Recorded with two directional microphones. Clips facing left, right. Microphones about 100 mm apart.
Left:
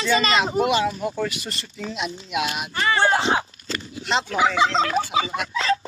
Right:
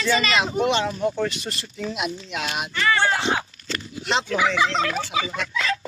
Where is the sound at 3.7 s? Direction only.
Centre (ahead or behind).